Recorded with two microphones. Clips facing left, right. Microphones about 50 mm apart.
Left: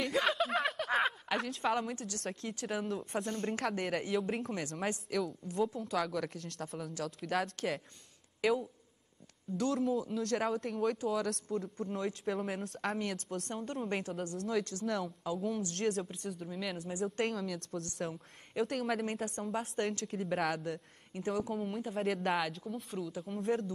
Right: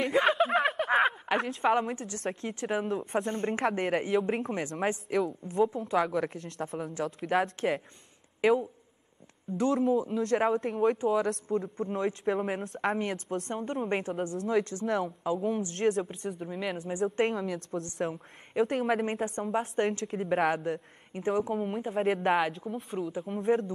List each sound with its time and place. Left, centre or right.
0.0 s a sound: right
2.0 s a woman's voice: right
2.6 s a woman's voice: centre
7.3 s a man's voice: centre
21.1 s a woman's voice: right
21.9 s a man's voice: centre
22.4 s a woman's voice: right